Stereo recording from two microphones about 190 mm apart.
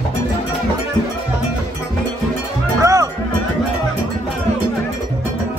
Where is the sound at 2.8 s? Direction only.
15° right (ahead or behind).